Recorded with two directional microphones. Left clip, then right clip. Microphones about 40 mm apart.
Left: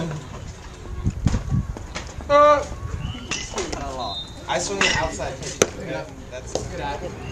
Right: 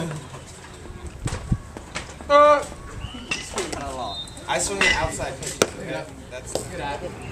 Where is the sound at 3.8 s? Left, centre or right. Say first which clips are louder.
Left 1 dB; right.